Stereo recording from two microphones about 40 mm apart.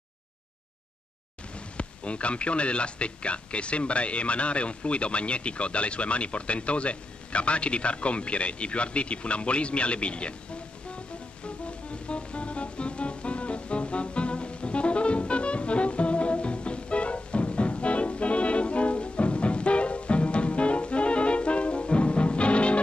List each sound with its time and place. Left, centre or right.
1.8 s speech: left
12.1 s music: left